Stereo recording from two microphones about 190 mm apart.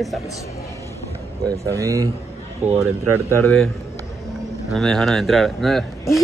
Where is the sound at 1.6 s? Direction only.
15° right (ahead or behind).